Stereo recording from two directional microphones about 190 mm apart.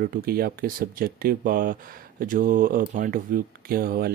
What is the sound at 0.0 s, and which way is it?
Speech, 50° right (ahead or behind).